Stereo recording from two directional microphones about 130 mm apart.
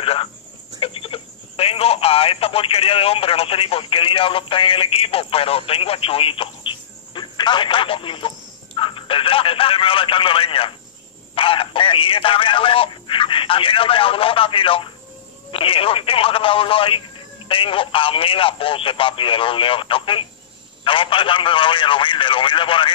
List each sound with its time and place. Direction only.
0.0 s a man's voice: 45° left (ahead or behind)